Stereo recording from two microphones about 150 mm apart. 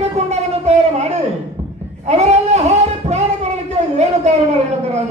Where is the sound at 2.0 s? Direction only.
50° right (ahead or behind).